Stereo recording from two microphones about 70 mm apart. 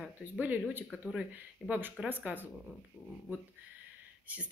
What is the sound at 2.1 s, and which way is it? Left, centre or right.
Speech, right.